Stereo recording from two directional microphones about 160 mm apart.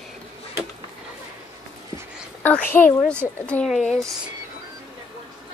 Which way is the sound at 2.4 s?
10° left (ahead or behind).